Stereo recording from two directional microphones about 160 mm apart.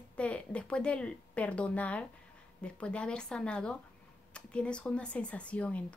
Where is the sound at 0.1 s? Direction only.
5° left (ahead or behind).